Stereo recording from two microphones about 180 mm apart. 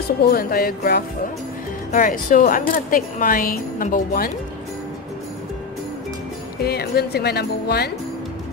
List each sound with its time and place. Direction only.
0.2 s speech: 55° left (ahead or behind)
6.6 s speech: 60° left (ahead or behind)